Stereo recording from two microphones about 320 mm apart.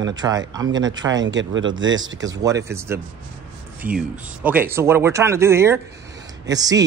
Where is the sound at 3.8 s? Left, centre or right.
Right.